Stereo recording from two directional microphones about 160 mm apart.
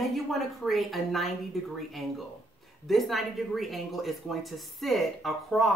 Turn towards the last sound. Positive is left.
turn(degrees=0)  # may be behind; listen again after turning